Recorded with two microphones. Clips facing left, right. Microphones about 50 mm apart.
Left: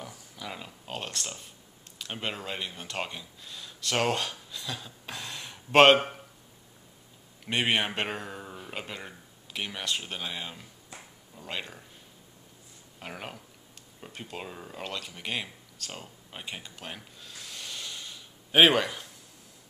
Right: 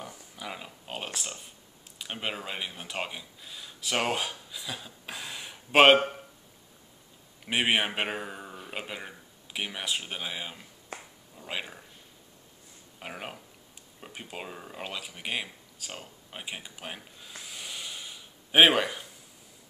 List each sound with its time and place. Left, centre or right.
0.0 s speech: centre
7.4 s a man's voice: centre
10.9 s finger snapping: right
11.3 s a man's voice: centre
13.0 s a man's voice: centre